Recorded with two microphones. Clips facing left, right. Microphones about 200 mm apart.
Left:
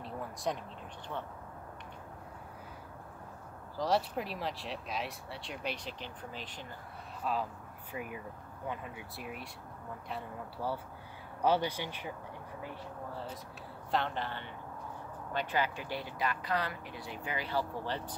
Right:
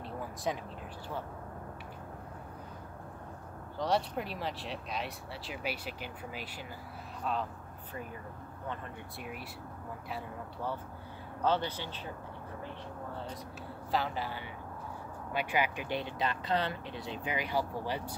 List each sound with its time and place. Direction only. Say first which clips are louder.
0.0 s a sound: right 1 dB; centre (ahead or behind)
3.7 s speech: even; centre (ahead or behind)
7.3 s speech: even; centre (ahead or behind)
7.9 s speech: left 2 dB; 10° left (ahead or behind)
11.4 s a woman's voice: left 1 dB; 10° left (ahead or behind); by 18.1 s 10° right (ahead or behind)